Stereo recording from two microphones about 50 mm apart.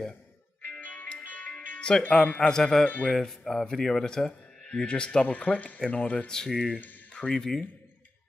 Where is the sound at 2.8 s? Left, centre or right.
Left.